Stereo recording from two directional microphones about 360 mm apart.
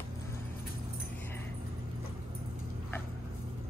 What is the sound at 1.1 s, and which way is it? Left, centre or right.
Vehicle, centre.